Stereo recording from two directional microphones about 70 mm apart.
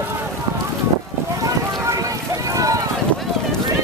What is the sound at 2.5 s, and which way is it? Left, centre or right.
Run, right.